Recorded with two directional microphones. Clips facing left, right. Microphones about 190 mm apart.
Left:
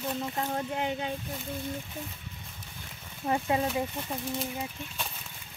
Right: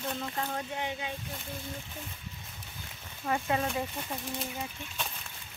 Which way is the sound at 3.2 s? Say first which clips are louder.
Left 2 dB; 20° left (ahead or behind).